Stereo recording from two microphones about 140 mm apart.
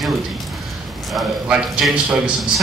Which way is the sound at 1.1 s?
Centre (ahead or behind).